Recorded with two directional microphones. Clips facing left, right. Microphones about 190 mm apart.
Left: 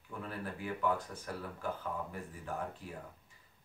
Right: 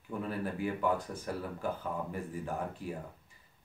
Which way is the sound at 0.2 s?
15° right (ahead or behind).